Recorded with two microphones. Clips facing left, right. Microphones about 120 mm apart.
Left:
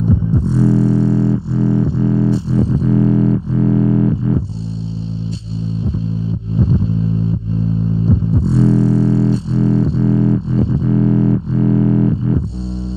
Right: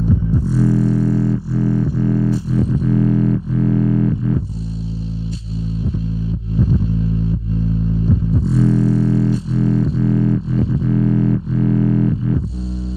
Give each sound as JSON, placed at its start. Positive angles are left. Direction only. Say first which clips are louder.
{"t": 0.0, "sound": "music", "louder": "left 2 dB", "side_deg": 25}
{"t": 6.5, "sound": "vehicle", "louder": "left 2 dB", "side_deg": 30}
{"t": 8.0, "sound": "music", "louder": "left 3 dB", "side_deg": 30}